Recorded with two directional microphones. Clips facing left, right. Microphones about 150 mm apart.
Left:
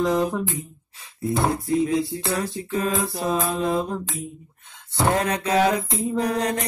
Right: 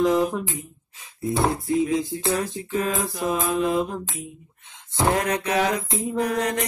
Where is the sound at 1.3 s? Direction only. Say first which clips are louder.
Even; centre (ahead or behind).